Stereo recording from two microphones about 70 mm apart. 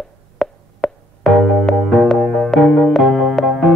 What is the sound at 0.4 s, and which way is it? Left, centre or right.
Music, centre.